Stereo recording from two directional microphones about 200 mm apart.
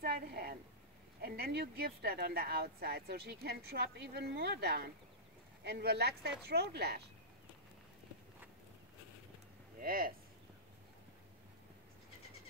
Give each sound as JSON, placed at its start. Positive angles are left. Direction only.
{"t": 0.0, "sound": "a sound", "side_deg": -50}
{"t": 1.2, "sound": "speech", "side_deg": -50}
{"t": 9.8, "sound": "speech", "side_deg": -45}